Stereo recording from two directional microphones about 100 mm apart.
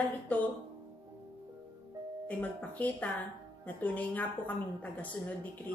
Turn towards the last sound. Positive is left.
turn(degrees=15)  # may be behind; listen again after turning